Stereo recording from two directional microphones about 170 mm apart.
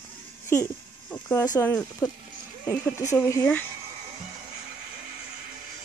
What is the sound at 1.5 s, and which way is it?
Speech, 15° left (ahead or behind).